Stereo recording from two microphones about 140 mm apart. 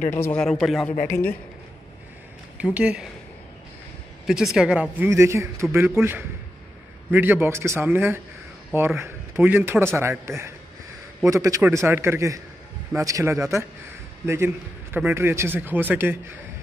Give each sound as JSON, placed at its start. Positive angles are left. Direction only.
{"t": 0.1, "sound": "a man's voice", "side_deg": 15}
{"t": 2.5, "sound": "speech", "side_deg": -10}
{"t": 4.6, "sound": "speech", "side_deg": -10}
{"t": 4.9, "sound": "a man's voice", "side_deg": -20}